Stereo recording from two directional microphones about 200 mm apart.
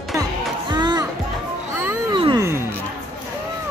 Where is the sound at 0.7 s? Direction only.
20° right (ahead or behind).